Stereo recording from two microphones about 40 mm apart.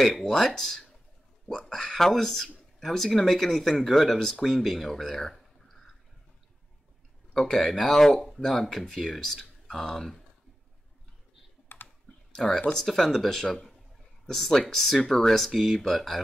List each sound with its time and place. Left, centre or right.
0.0 s speech: centre
0.6 s speech: centre
7.3 s speech: centre
11.7 s computer keyboard: left
12.4 s speech: centre